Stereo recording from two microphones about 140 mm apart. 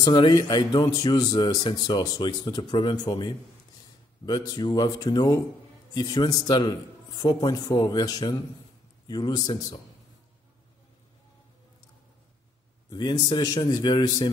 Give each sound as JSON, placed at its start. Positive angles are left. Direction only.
{"t": 0.0, "sound": "speech", "side_deg": 30}
{"t": 12.9, "sound": "speech", "side_deg": 30}